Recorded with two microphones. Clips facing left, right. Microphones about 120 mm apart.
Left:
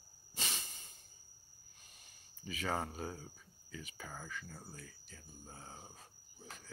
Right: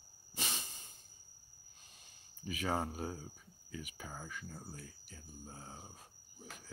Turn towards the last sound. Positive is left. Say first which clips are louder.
# right 1 dB
turn(degrees=-10)  # may be behind; listen again after turning